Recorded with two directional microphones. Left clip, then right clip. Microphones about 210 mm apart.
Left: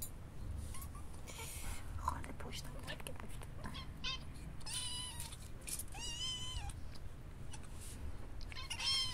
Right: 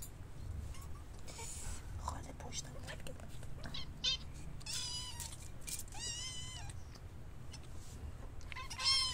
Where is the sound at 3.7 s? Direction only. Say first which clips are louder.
Right 7 dB; 15° right (ahead or behind).